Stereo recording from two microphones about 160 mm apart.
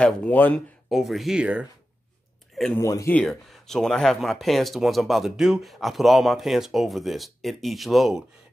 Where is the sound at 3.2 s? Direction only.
5° left (ahead or behind).